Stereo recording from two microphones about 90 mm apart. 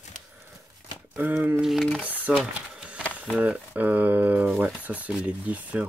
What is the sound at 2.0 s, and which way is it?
Speech, 15° right (ahead or behind).